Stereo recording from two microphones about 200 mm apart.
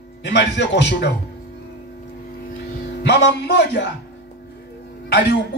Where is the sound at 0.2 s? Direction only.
60° left (ahead or behind).